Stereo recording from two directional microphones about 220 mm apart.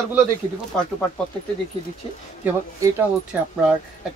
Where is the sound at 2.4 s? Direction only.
5° right (ahead or behind).